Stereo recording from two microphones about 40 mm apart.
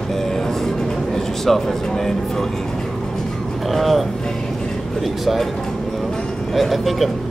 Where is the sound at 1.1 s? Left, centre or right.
Centre.